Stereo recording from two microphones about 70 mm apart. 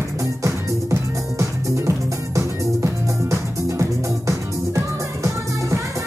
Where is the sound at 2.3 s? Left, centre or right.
Right.